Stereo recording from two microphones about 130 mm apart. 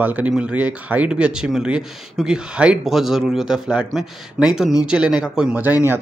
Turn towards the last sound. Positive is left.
turn(degrees=-10)  # may be behind; listen again after turning